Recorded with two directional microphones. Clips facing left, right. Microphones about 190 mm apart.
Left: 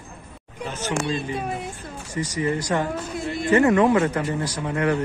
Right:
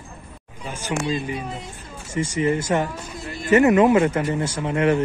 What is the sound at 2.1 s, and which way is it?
Speech, 25° right (ahead or behind).